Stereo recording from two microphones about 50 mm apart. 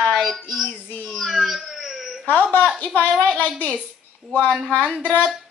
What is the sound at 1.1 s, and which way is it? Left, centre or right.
Wail, centre.